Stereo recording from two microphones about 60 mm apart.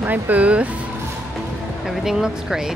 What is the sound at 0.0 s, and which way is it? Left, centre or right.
Speech, right.